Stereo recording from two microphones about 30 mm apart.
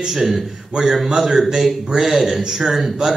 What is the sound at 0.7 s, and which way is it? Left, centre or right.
Speech, right.